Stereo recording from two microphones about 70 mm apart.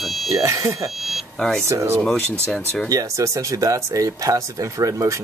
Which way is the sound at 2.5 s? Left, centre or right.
Centre.